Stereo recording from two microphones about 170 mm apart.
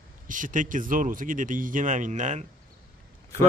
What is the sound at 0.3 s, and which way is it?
A man's voice, 50° right (ahead or behind).